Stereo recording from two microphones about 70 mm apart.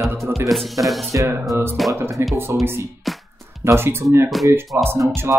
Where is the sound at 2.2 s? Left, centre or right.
Right.